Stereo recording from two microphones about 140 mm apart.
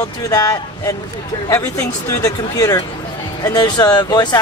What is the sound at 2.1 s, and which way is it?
Speech, 20° left (ahead or behind).